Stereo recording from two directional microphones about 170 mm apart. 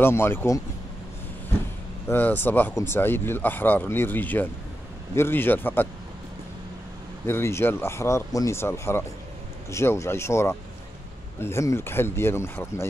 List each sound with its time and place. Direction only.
0.0 s speech: 15° left (ahead or behind)
2.0 s speech: 10° left (ahead or behind)
7.2 s speech: 15° left (ahead or behind)